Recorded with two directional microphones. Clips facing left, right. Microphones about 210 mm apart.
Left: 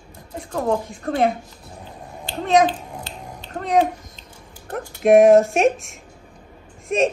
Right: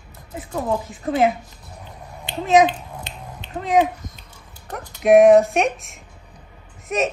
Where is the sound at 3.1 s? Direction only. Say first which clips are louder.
Left 1 dB; 20° right (ahead or behind).